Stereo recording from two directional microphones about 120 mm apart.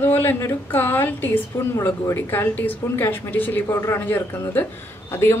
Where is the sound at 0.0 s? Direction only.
15° left (ahead or behind).